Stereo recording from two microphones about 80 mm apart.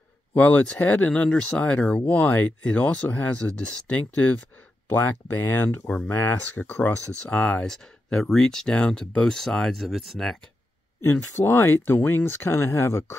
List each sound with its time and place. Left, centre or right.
0.3 s speech: left
4.8 s speech: left; by 10.3 s centre
11.0 s speech: left